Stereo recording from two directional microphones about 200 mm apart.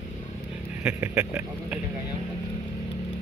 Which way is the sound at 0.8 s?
10° right (ahead or behind).